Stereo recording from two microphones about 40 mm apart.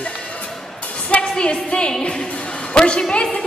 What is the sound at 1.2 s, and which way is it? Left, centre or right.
A woman's voice, left.